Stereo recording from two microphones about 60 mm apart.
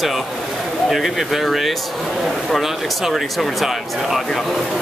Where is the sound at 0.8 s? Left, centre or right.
Centre.